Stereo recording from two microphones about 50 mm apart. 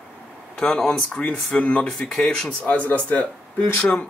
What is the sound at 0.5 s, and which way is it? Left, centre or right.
Speech, centre.